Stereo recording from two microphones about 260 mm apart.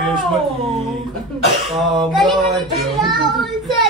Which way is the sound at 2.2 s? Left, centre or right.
Centre.